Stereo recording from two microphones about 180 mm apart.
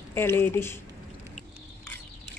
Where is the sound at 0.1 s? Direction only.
15° left (ahead or behind).